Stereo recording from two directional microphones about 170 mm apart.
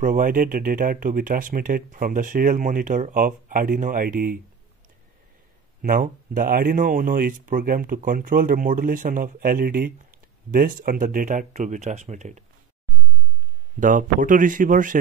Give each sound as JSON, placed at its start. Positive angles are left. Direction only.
{"t": 0.0, "sound": "speech", "side_deg": -55}
{"t": 5.8, "sound": "speech", "side_deg": -55}
{"t": 13.7, "sound": "speech", "side_deg": -50}